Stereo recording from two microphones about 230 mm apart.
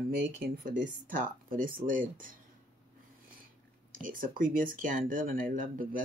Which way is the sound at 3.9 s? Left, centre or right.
Right.